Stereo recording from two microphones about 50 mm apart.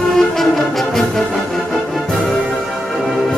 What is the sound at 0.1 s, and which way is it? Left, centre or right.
Music, centre.